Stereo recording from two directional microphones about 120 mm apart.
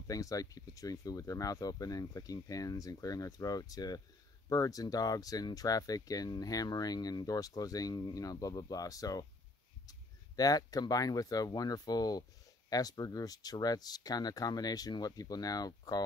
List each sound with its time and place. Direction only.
0.0 s speech: 30° left (ahead or behind)